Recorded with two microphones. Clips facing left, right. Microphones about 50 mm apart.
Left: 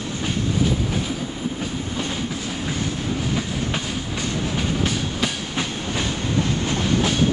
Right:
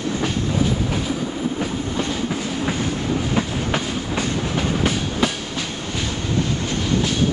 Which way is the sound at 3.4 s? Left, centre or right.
Right.